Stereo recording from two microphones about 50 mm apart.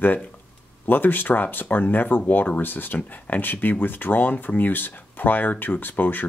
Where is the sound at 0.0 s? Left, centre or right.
Left.